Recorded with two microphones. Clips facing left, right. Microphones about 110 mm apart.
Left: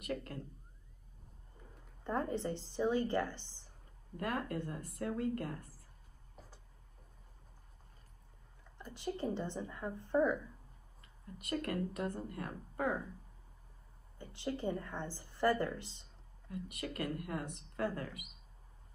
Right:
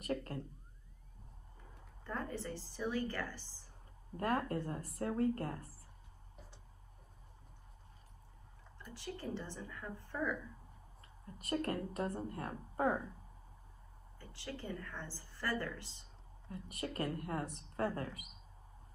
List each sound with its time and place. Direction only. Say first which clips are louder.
0.0 s speech: right 1 dB; 35° right (ahead or behind)
2.0 s a woman's voice: left 6 dB; 20° left (ahead or behind)
4.2 s speech: right 2 dB; 35° right (ahead or behind)
8.9 s a woman's voice: left 5 dB; 20° left (ahead or behind)
11.3 s speech: even; 35° right (ahead or behind)
14.1 s a woman's voice: left 7 dB; 20° left (ahead or behind)
16.4 s speech: left 1 dB; 35° right (ahead or behind)